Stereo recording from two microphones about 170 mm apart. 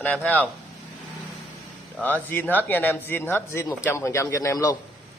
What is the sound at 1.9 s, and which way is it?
Speech, 10° left (ahead or behind).